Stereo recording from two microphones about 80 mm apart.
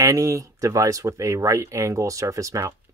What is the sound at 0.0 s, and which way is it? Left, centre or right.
Speech, right.